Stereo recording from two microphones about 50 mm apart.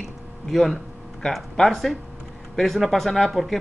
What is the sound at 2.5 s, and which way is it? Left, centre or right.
Speech, centre.